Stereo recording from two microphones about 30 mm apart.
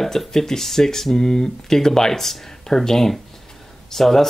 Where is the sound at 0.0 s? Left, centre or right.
Centre.